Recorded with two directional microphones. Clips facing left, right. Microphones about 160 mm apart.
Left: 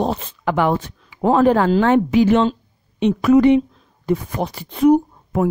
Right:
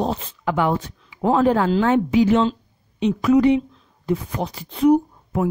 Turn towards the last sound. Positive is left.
turn(degrees=60)  # may be behind; listen again after turning